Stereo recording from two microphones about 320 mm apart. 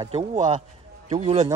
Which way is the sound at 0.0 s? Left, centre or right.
Centre.